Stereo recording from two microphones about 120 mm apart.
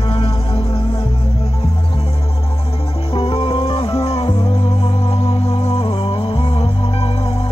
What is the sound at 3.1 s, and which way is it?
Music, 50° left (ahead or behind).